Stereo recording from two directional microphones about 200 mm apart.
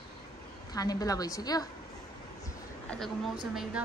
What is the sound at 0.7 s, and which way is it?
Speech, 20° left (ahead or behind).